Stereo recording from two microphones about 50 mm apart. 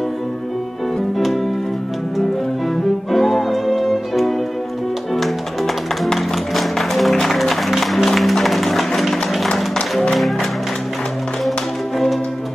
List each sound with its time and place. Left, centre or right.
1.1 s music: centre
3.1 s music: centre
6.1 s music: centre